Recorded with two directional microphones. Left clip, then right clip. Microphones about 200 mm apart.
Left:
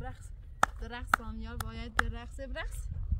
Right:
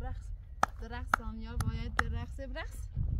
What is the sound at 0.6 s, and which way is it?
Speech, 5° left (ahead or behind).